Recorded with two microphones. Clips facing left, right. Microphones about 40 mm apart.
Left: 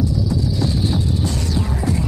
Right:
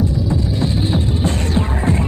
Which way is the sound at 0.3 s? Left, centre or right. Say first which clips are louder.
Right 2 dB; right.